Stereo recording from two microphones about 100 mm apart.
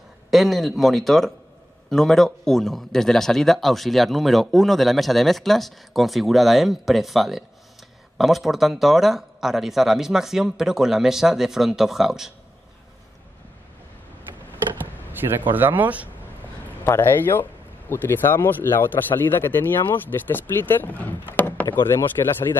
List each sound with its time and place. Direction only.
0.3 s a man's voice: centre (ahead or behind)
15.1 s speech: 20° right (ahead or behind)
16.6 s speech: 20° left (ahead or behind)